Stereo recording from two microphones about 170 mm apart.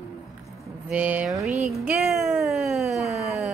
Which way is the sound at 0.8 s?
10° right (ahead or behind).